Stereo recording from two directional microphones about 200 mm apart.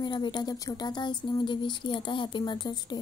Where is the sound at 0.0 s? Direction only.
20° left (ahead or behind).